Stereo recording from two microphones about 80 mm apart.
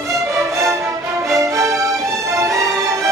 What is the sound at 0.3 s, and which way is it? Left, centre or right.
Music, right.